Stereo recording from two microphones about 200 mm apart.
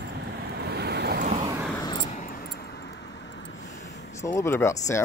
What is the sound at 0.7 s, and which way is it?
Waves, 55° right (ahead or behind).